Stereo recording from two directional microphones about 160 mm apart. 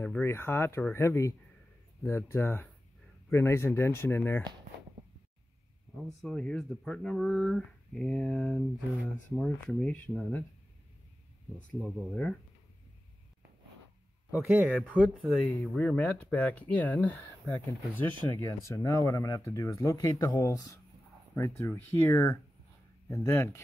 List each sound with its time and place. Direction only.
0.0 s speech: 10° left (ahead or behind)
6.2 s speech: 5° left (ahead or behind)
11.5 s speech: 10° right (ahead or behind)
14.3 s speech: 5° right (ahead or behind); by 23.6 s 15° left (ahead or behind)